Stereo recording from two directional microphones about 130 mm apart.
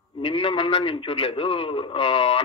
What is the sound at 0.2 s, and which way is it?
A man's voice, 45° left (ahead or behind).